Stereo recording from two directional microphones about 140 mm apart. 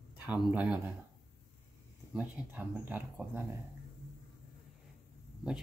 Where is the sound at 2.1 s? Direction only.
10° right (ahead or behind).